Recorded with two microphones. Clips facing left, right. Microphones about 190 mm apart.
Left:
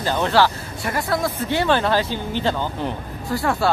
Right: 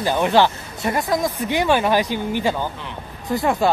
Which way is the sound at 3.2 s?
20° right (ahead or behind).